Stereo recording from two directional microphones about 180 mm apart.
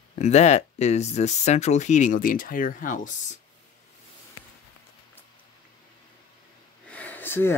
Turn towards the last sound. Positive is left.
turn(degrees=10)  # may be behind; listen again after turning